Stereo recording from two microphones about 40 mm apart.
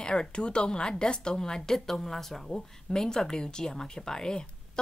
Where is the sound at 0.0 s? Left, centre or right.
Centre.